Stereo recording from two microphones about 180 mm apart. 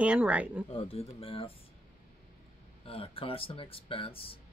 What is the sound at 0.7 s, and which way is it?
Speech, 35° left (ahead or behind).